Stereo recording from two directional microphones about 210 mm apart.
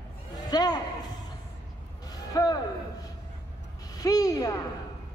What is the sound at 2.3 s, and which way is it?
Speech, 20° left (ahead or behind).